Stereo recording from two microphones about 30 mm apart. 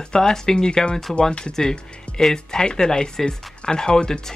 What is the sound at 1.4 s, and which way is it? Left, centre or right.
Speech, left.